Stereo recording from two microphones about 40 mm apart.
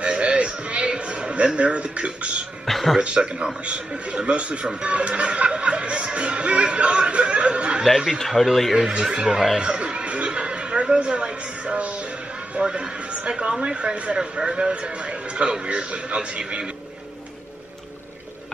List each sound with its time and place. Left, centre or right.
0.0 s a sound: right
2.6 s speech: centre
3.0 s a man's voice: right
8.2 s speech: centre
8.7 s speech: centre
9.6 s a sound: right
11.0 s speech: right